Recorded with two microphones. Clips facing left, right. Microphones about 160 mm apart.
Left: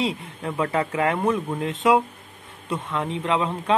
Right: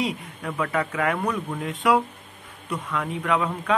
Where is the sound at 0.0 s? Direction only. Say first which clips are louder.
Left 2 dB; 25° left (ahead or behind).